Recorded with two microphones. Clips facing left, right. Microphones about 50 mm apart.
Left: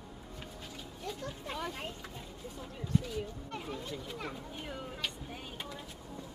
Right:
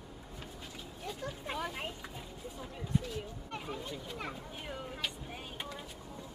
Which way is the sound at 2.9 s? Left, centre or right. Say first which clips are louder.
Left 2 dB; centre.